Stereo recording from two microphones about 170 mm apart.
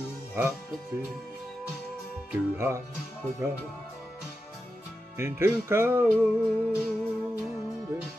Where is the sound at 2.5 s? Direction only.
15° right (ahead or behind).